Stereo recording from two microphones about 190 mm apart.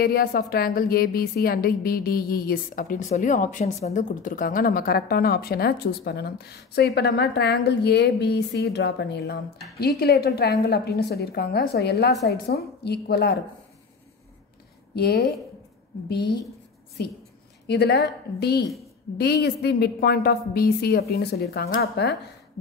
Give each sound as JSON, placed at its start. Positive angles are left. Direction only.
{"t": 0.0, "sound": "a woman's voice", "side_deg": 55}
{"t": 15.0, "sound": "a woman's voice", "side_deg": 55}
{"t": 17.6, "sound": "a woman's voice", "side_deg": 60}